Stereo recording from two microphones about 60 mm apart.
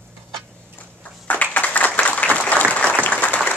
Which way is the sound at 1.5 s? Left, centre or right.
Left.